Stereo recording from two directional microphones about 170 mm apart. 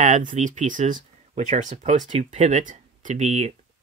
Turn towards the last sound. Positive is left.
turn(degrees=-45)  # may be behind; listen again after turning